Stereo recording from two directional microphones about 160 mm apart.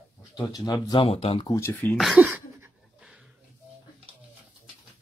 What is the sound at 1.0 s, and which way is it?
Speech, 40° left (ahead or behind).